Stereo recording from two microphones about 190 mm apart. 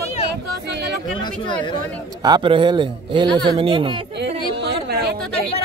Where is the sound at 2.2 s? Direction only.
20° right (ahead or behind).